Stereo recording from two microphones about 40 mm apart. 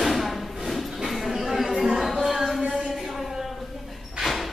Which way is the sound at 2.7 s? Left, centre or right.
Centre.